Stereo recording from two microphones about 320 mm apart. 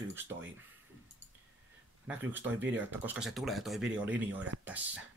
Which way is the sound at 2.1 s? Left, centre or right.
Centre.